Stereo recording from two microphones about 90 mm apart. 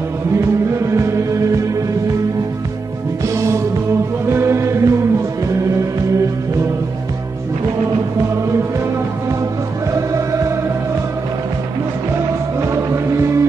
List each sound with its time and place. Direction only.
0.7 s music: 35° right (ahead or behind)
3.3 s music: 35° right (ahead or behind)
9.9 s music: 35° right (ahead or behind)
12.5 s music: 30° right (ahead or behind)